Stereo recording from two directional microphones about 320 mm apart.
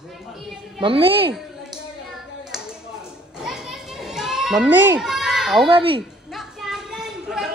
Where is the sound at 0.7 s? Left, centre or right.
Centre.